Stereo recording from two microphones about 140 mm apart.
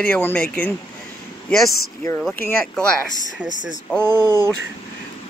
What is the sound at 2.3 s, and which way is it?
Speech, 15° left (ahead or behind).